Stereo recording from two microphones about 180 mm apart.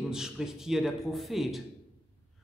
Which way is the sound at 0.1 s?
5° right (ahead or behind).